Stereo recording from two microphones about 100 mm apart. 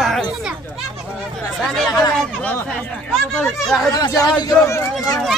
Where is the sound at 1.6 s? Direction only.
5° left (ahead or behind).